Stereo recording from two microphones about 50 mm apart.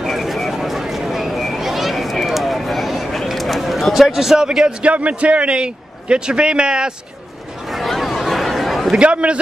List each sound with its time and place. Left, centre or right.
0.0 s a sound: centre
4.9 s a man's voice: right
7.7 s chatter: centre
8.9 s a man's voice: right